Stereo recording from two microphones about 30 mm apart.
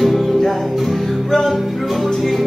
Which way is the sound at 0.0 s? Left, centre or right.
Centre.